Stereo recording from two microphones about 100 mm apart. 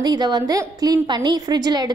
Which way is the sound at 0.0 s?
45° right (ahead or behind).